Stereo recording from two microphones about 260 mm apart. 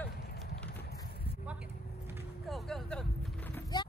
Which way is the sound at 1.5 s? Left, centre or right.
Centre.